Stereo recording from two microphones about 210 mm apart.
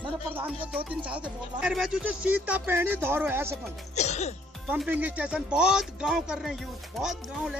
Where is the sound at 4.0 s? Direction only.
30° left (ahead or behind).